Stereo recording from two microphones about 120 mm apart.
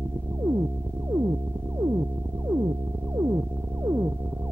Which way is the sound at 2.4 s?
35° right (ahead or behind).